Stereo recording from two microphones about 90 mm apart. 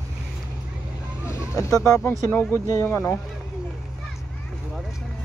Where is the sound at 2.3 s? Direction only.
20° left (ahead or behind).